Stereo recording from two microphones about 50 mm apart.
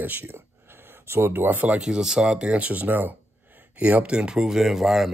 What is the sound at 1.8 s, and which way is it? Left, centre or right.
Speech, centre.